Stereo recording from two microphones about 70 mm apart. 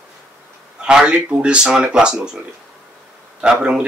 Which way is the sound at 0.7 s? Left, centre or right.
Centre.